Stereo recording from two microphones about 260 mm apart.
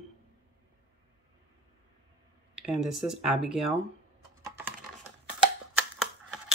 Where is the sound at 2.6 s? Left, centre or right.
Centre.